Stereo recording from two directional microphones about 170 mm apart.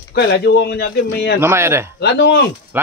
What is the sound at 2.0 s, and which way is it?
Speech, 75° left (ahead or behind).